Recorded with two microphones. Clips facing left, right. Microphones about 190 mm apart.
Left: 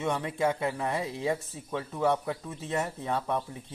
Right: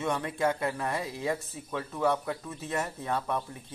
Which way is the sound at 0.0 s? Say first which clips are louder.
Left 1 dB; 20° left (ahead or behind).